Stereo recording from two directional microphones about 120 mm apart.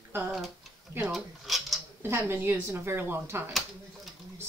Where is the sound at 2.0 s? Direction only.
20° right (ahead or behind).